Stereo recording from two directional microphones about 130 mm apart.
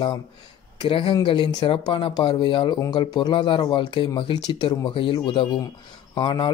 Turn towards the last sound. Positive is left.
turn(degrees=35)  # may be behind; listen again after turning